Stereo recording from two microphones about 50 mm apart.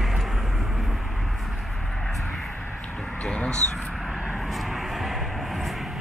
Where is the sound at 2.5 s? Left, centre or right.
Left.